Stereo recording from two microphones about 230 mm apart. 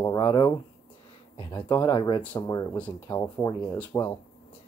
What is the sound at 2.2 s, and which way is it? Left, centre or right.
Speech, centre.